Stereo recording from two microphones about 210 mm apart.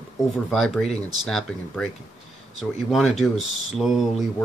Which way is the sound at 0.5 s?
Centre (ahead or behind).